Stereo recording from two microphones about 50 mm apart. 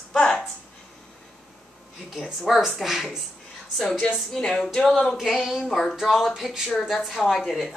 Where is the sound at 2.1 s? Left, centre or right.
Centre.